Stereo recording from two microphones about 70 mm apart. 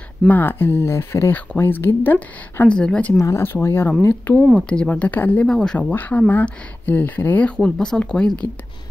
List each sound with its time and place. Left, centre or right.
0.3 s speech: left
1.3 s speech: left
2.7 s speech: centre
3.2 s speech: left
4.1 s speech: left
4.6 s speech: centre
5.5 s speech: centre
5.8 s speech: left
7.4 s speech: centre